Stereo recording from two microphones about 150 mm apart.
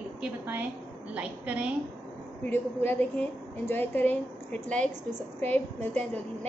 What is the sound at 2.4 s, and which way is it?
A woman's voice, 10° left (ahead or behind).